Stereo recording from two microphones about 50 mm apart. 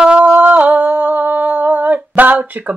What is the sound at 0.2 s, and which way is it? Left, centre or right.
Humming, right.